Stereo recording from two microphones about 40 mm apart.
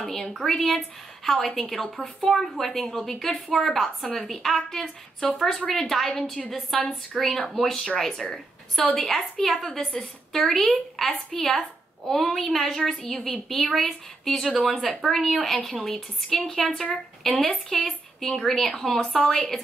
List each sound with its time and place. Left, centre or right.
0.0 s a woman's voice: centre